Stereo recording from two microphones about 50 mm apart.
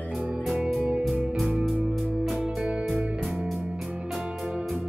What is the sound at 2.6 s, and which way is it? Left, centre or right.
Music, right.